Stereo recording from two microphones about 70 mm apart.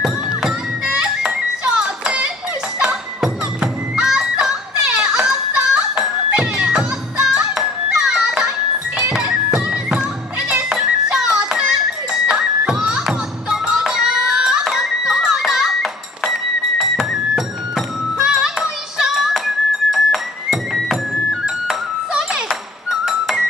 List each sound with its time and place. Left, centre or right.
0.0 s music: centre
14.3 s a sound: centre
18.1 s music: centre